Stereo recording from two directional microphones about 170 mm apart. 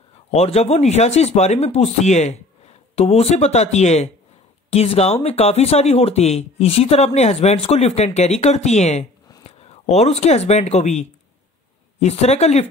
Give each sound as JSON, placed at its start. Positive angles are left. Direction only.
{"t": 0.3, "sound": "speech", "side_deg": 40}